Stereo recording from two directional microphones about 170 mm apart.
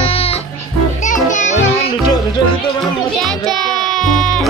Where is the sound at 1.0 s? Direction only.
45° left (ahead or behind).